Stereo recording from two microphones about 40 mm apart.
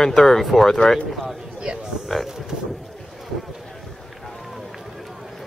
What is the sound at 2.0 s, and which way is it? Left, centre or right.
Speech, centre.